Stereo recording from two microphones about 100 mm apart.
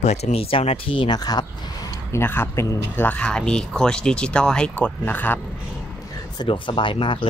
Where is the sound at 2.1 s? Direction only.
20° left (ahead or behind).